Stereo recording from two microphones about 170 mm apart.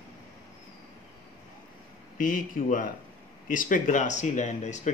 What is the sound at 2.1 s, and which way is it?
Speech, 50° left (ahead or behind).